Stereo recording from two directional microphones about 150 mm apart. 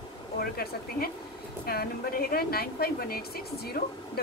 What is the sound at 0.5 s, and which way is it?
Speech, 90° left.